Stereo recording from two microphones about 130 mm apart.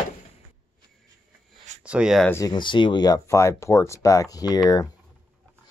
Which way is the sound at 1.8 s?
5° right (ahead or behind).